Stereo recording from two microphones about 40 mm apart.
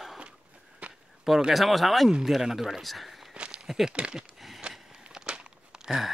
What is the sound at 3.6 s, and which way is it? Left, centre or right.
Speech, centre.